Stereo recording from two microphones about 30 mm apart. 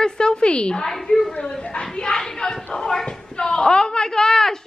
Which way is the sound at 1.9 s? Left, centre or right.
Left.